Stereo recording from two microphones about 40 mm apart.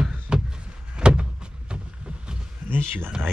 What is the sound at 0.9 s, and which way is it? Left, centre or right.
Door, right.